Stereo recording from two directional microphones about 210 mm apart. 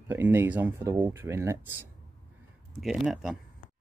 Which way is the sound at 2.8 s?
Centre (ahead or behind).